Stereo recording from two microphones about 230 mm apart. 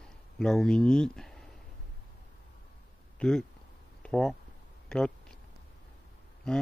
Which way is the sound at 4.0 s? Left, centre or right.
Centre.